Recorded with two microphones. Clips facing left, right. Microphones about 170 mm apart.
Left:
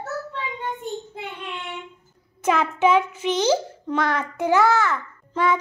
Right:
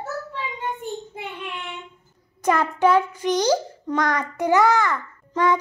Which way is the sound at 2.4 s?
10° left (ahead or behind).